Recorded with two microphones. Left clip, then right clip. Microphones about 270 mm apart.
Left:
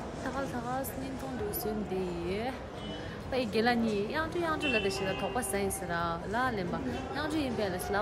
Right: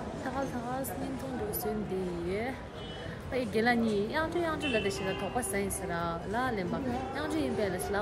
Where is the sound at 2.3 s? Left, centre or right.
Centre.